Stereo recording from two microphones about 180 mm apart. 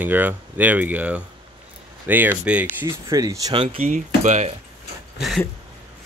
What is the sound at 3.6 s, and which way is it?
Speech, 40° right (ahead or behind).